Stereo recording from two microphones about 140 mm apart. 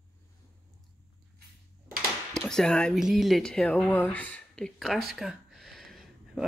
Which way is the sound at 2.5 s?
5° left (ahead or behind).